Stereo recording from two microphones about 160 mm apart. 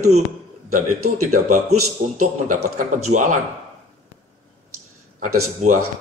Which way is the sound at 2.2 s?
55° right (ahead or behind).